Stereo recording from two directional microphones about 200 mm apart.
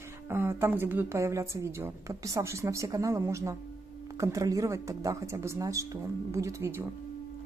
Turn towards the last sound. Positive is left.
turn(degrees=-10)  # may be behind; listen again after turning